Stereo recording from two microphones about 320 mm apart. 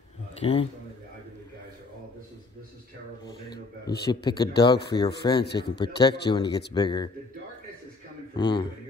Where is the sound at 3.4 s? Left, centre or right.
Left.